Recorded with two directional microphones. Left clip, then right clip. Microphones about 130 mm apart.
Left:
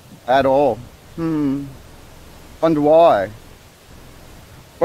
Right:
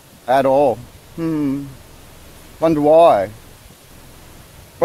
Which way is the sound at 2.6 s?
20° right (ahead or behind).